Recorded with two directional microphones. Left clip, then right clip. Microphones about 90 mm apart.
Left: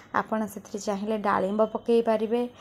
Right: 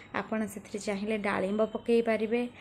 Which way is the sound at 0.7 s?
25° left (ahead or behind).